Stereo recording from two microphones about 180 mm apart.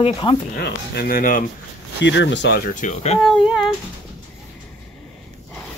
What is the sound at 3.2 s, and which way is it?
Speech, centre (ahead or behind).